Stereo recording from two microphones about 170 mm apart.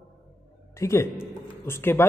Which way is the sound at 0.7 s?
15° left (ahead or behind).